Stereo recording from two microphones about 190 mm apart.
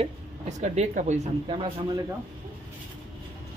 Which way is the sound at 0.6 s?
40° right (ahead or behind).